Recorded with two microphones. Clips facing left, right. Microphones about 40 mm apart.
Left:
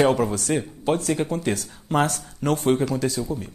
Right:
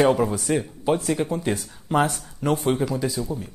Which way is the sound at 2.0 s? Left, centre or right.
Centre.